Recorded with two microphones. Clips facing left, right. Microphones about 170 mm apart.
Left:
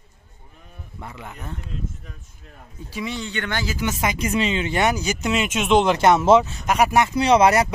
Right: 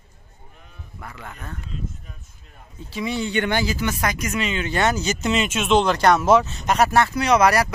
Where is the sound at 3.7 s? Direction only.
20° left (ahead or behind).